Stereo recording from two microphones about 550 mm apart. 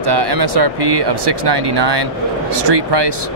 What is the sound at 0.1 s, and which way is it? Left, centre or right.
Speech, right.